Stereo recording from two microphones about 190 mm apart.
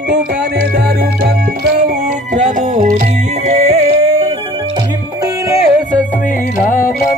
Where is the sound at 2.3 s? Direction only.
40° right (ahead or behind).